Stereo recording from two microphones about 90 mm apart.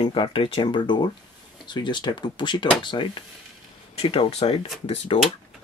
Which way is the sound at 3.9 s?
90° left.